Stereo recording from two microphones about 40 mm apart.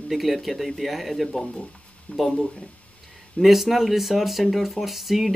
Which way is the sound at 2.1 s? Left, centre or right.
Left.